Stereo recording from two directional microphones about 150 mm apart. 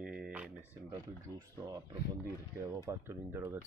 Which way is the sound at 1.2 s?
20° right (ahead or behind).